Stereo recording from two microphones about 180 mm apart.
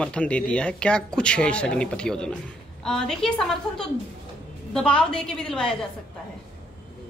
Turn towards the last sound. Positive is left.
turn(degrees=5)  # may be behind; listen again after turning